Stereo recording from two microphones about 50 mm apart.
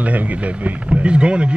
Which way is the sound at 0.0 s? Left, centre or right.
Right.